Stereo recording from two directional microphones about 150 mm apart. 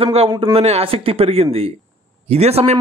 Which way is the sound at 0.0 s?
40° right (ahead or behind).